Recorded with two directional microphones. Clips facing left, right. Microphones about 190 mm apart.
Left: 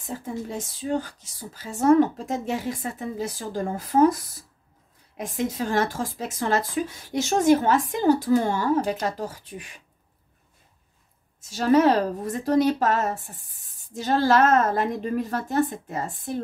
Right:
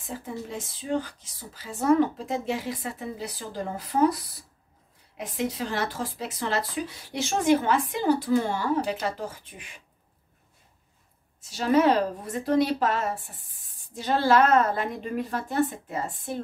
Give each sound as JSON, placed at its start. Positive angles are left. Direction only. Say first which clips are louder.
{"t": 0.0, "sound": "speech", "louder": "left 3 dB", "side_deg": 40}
{"t": 11.5, "sound": "speech", "louder": "left 3 dB", "side_deg": 40}